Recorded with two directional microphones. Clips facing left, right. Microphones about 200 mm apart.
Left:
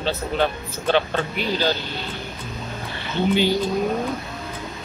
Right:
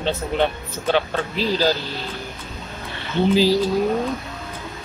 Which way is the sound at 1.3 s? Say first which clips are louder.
Right 5 dB; 30° right (ahead or behind).